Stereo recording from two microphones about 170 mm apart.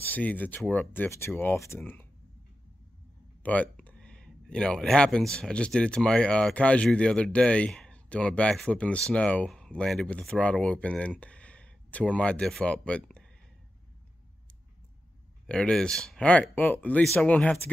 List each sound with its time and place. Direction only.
0.0 s speech: 10° left (ahead or behind)
3.4 s speech: 10° left (ahead or behind)
15.4 s speech: 5° left (ahead or behind)